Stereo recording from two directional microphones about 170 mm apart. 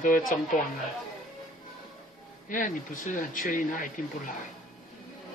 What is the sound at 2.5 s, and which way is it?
Speech, 50° left (ahead or behind).